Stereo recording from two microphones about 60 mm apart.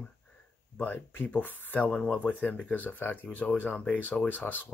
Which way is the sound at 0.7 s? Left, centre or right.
Left.